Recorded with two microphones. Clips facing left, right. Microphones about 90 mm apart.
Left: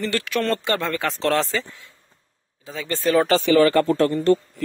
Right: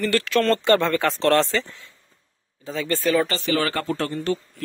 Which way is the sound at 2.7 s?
15° left (ahead or behind).